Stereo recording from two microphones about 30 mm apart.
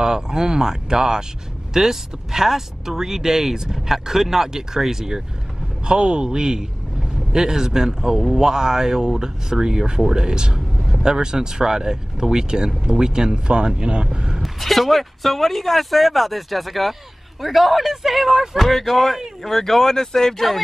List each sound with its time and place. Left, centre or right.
0.0 s speech: right
5.9 s a man's voice: right
14.4 s speech: centre
18.6 s speech: centre